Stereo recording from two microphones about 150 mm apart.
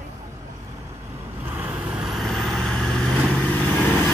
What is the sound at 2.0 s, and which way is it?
Vehicle, centre (ahead or behind).